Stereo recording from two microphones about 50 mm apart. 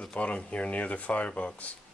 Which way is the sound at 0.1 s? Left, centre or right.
Left.